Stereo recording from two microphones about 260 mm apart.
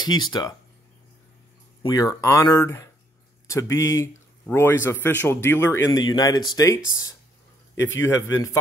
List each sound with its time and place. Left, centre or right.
0.0 s a man's voice: centre
1.8 s a man's voice: centre
8.0 s a man's voice: centre